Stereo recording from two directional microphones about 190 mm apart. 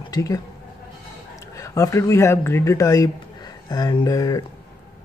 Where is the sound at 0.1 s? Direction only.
20° left (ahead or behind).